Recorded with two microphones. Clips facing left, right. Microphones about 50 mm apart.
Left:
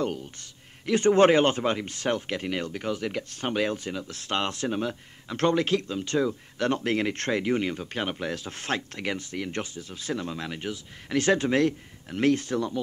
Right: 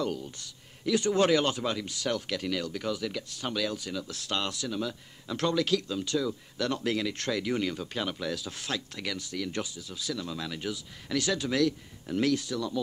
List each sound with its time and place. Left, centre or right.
0.0 s speech: left